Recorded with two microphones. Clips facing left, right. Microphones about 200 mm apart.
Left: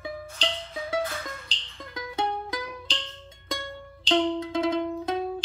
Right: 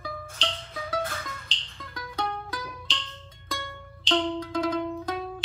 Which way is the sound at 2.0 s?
25° left (ahead or behind).